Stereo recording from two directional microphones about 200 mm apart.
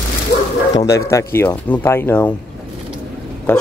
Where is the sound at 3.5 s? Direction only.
10° left (ahead or behind).